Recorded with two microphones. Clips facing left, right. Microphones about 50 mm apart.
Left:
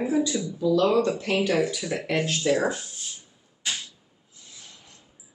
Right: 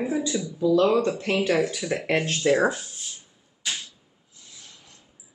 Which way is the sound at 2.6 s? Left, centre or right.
Centre.